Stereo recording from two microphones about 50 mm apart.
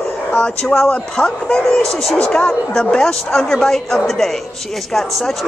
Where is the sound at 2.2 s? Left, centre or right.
Left.